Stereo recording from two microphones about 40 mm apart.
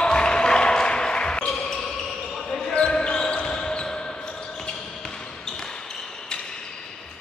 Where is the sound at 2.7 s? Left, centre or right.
Left.